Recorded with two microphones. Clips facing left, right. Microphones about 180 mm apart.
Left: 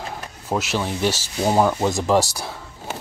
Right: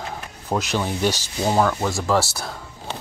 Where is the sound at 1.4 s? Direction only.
15° left (ahead or behind).